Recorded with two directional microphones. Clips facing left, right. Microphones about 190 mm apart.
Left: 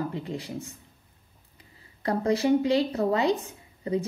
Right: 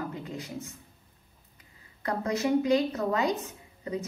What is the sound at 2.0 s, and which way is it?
A woman's voice, 30° left (ahead or behind).